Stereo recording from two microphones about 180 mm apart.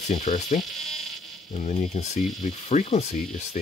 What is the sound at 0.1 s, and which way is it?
Ratchet, 35° left (ahead or behind).